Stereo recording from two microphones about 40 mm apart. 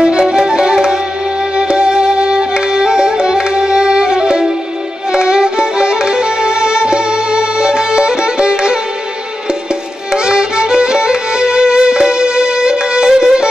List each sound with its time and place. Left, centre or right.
0.0 s music: centre
10.1 s violin: right